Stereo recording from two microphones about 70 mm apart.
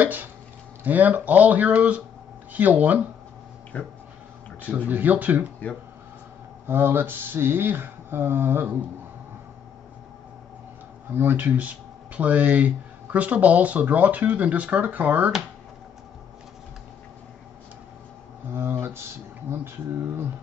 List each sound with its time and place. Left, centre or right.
0.0 s speech: right
3.7 s speech: centre
4.6 s speech: right
6.7 s speech: right
11.1 s speech: right
18.5 s speech: right